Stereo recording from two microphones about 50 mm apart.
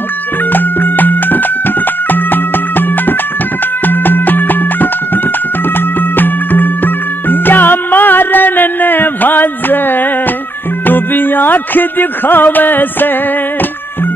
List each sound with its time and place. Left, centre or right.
0.5 s music: left
3.8 s music: left